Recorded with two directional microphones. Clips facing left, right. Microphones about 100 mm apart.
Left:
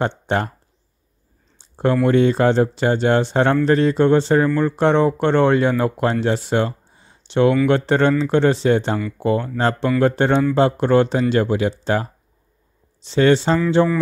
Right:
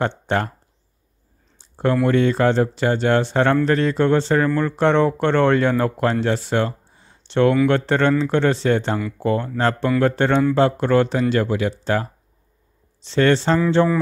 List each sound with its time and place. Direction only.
0.0 s speech: 15° left (ahead or behind)
2.0 s speech: 20° left (ahead or behind)